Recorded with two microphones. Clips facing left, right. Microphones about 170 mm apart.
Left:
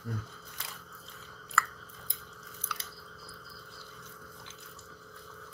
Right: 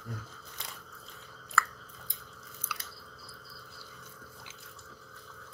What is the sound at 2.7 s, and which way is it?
Chewing, 10° right (ahead or behind).